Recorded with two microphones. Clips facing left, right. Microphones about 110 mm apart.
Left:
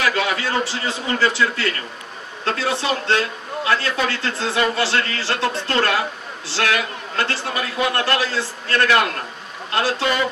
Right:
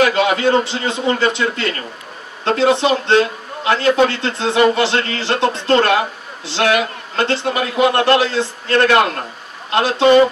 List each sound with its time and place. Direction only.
0.0 s a man's voice: 25° right (ahead or behind)